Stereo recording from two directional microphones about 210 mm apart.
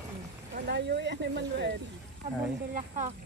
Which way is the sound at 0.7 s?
55° right (ahead or behind).